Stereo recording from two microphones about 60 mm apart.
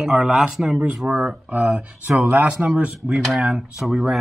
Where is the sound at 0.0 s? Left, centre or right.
Centre.